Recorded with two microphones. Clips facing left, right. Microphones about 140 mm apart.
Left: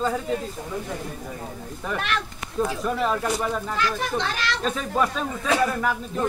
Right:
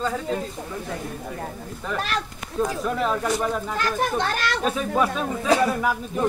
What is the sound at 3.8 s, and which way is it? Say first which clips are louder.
Speech: right 3 dB; 50° right (ahead or behind).